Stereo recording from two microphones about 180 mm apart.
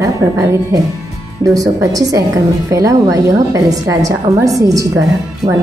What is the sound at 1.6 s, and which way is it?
A woman's voice, 20° right (ahead or behind).